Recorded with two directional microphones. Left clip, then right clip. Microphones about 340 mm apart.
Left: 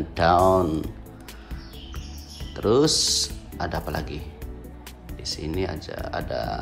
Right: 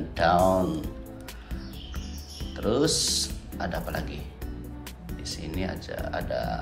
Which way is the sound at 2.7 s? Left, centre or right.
Centre.